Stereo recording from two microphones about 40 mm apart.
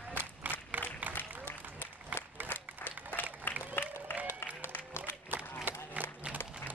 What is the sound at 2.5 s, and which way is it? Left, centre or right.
Applause, left.